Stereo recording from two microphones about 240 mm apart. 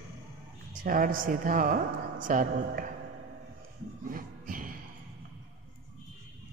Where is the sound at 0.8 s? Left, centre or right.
Right.